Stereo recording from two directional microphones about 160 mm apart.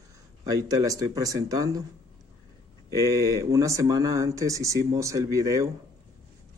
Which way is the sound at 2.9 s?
20° right (ahead or behind).